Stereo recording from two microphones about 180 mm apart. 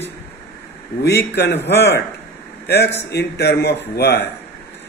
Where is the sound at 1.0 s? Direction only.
70° left (ahead or behind).